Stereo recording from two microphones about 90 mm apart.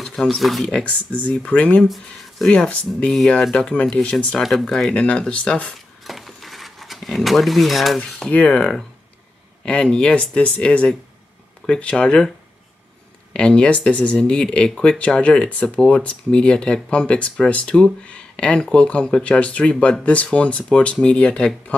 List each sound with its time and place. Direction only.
0.0 s speech: 5° left (ahead or behind)
0.7 s speech: 15° left (ahead or behind)
1.9 s speech: 5° left (ahead or behind)
4.4 s speech: centre (ahead or behind)
6.0 s a sound: centre (ahead or behind)
8.0 s speech: 15° left (ahead or behind)
13.3 s speech: 10° left (ahead or behind)